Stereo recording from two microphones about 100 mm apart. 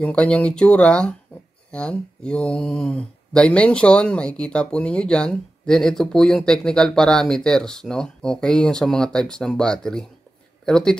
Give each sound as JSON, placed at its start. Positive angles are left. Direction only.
{"t": 0.0, "sound": "speech", "side_deg": 10}